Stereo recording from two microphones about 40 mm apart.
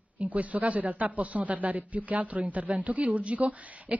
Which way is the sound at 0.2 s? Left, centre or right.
Right.